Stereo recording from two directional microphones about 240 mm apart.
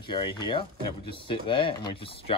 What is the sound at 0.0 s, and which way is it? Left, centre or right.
Speech, centre.